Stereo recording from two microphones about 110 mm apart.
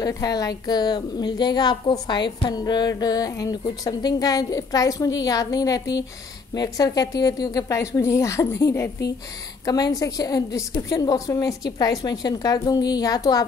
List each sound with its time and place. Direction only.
0.0 s a woman's voice: 35° left (ahead or behind)